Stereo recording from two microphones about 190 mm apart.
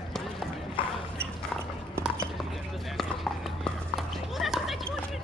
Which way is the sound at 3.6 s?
Centre (ahead or behind).